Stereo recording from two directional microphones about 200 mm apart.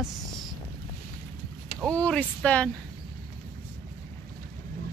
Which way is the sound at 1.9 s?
5° left (ahead or behind).